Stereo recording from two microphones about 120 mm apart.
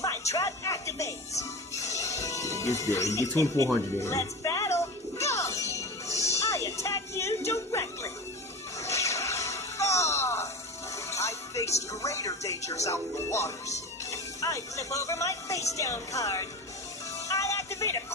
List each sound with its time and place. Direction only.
0.0 s speech: 25° left (ahead or behind)
4.0 s music: 25° left (ahead or behind)
11.9 s speech: 25° left (ahead or behind)
17.3 s music: 25° left (ahead or behind)